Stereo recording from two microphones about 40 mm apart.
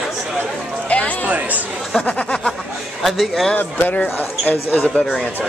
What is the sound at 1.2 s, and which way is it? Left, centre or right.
Speech, right.